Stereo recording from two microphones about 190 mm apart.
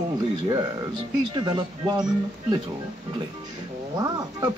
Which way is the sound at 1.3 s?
20° right (ahead or behind).